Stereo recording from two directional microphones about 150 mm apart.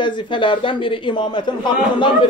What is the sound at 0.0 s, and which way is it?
Speech, 35° left (ahead or behind).